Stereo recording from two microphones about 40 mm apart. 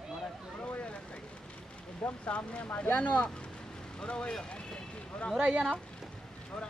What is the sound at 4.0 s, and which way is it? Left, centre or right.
Boat, left.